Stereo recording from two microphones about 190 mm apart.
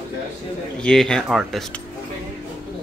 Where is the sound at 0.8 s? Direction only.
5° left (ahead or behind).